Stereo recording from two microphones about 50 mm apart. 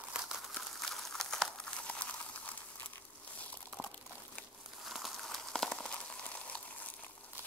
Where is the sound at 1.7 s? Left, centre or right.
Left.